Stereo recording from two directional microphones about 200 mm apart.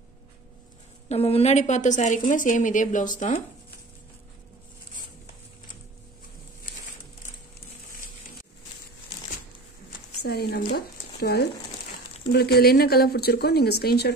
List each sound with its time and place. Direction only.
1.0 s a woman's voice: 30° left (ahead or behind)
10.2 s speech: 50° left (ahead or behind)